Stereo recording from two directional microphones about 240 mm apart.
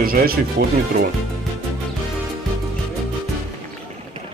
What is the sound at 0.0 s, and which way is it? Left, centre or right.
Speech, right.